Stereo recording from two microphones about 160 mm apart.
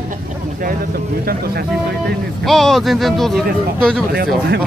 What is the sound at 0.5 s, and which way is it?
Speech, 65° right (ahead or behind).